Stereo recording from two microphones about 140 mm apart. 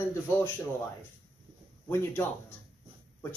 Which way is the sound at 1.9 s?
20° left (ahead or behind).